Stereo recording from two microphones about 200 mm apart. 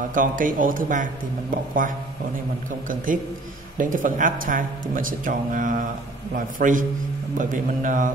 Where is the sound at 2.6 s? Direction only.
40° right (ahead or behind).